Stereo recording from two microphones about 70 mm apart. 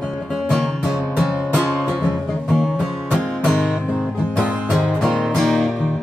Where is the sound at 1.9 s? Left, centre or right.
Centre.